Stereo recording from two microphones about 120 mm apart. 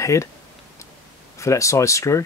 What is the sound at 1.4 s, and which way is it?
Speech, 25° left (ahead or behind).